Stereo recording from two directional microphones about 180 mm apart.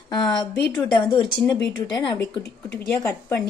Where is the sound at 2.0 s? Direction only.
20° left (ahead or behind).